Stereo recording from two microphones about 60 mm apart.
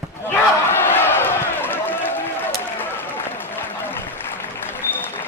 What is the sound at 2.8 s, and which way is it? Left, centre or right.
Applause, left.